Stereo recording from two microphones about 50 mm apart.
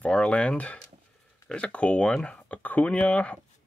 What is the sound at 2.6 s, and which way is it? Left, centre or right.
Speech, left.